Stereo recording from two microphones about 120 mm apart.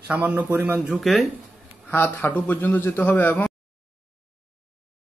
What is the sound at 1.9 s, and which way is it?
A man's voice, 15° left (ahead or behind).